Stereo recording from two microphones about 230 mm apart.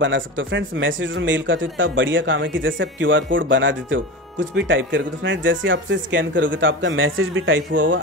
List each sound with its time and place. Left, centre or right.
0.0 s speech: right